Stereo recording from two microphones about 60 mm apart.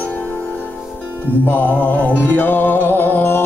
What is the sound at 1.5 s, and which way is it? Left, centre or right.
Music, left.